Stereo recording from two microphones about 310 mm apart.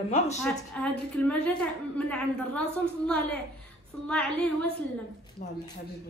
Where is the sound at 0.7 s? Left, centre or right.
Centre.